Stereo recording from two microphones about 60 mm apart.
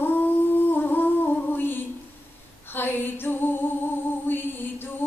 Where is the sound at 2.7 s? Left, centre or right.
Left.